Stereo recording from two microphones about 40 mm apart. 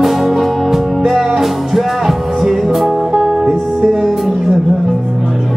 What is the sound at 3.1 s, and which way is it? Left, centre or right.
Music, centre.